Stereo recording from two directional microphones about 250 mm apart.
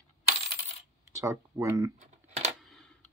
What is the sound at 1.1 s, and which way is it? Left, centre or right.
Speech, centre.